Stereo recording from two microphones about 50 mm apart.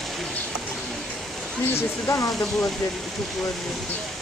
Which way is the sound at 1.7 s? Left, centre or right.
Left.